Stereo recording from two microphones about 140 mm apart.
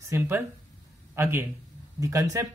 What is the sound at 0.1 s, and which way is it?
A man's voice, 20° right (ahead or behind).